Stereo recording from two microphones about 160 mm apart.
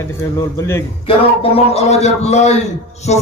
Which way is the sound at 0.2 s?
20° left (ahead or behind).